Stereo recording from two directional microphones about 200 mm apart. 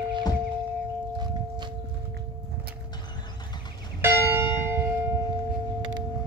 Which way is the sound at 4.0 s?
10° right (ahead or behind).